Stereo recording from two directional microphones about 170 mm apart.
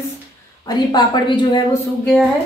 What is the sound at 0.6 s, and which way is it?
A woman's voice, 25° left (ahead or behind).